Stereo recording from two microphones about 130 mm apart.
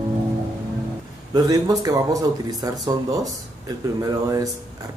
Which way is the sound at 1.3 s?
30° right (ahead or behind).